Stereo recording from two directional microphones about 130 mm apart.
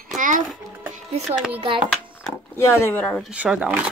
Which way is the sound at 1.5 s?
40° right (ahead or behind).